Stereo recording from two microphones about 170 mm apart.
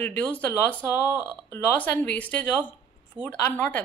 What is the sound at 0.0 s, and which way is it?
A woman's voice, 10° left (ahead or behind).